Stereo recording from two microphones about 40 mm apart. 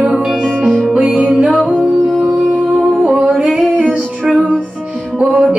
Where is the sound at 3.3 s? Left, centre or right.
Right.